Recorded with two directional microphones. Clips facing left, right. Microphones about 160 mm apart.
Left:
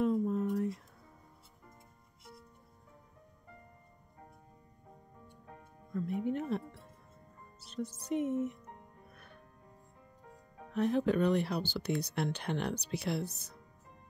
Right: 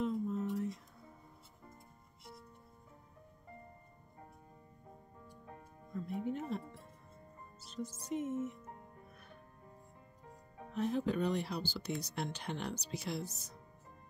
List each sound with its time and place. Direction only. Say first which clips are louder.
0.0 s a sound: left 5 dB; 55° left (ahead or behind)
6.2 s speech: left 4 dB; 65° left (ahead or behind)
7.6 s speech: left 4 dB; 65° left (ahead or behind)
10.7 s speech: left 5 dB; 65° left (ahead or behind)